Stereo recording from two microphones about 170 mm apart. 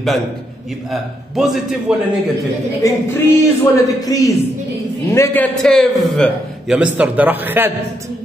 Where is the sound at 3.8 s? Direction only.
20° left (ahead or behind); by 7.7 s 10° right (ahead or behind).